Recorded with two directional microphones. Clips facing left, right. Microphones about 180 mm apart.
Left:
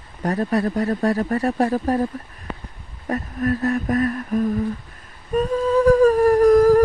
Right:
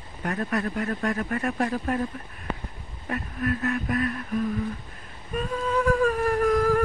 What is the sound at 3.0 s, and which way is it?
Speech, 40° left (ahead or behind).